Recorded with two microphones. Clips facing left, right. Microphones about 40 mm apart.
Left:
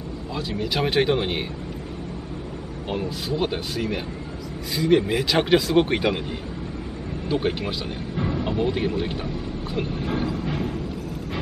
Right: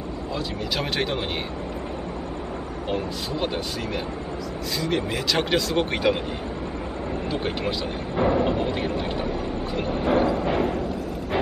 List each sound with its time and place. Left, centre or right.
0.3 s speech: centre
2.9 s speech: centre
7.2 s speech: centre
8.2 s speech: centre
8.5 s speech: centre
9.8 s music: centre